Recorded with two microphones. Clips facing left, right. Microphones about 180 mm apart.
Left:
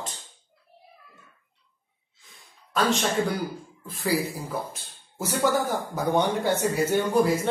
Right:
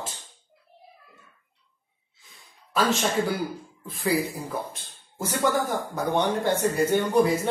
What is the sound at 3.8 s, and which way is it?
Speech, centre (ahead or behind).